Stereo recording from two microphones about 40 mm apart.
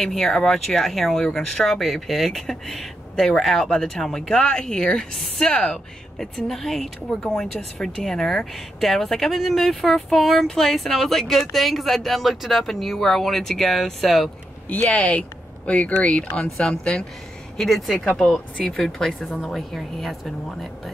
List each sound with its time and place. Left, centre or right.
0.0 s a woman's voice: centre
4.3 s a woman's voice: centre
6.4 s a woman's voice: centre
14.9 s speech: left
17.6 s a woman's voice: centre